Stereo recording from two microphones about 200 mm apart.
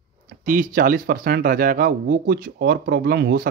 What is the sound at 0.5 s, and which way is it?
Speech, 45° right (ahead or behind).